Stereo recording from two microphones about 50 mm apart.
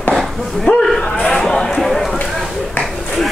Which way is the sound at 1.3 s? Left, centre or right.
Centre.